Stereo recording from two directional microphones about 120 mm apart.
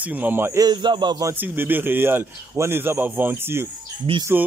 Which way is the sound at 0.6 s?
40° right (ahead or behind).